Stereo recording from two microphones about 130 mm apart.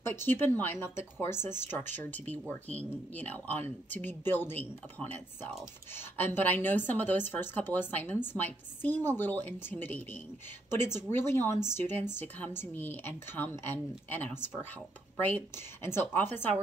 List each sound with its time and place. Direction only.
0.0 s speech: 20° left (ahead or behind)